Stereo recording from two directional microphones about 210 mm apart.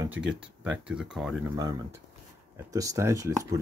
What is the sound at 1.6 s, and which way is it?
Speech, 15° right (ahead or behind).